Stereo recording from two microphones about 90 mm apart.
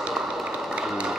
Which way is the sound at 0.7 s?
10° right (ahead or behind).